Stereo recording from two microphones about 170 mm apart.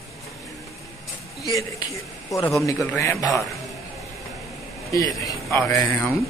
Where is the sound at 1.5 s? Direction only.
20° left (ahead or behind).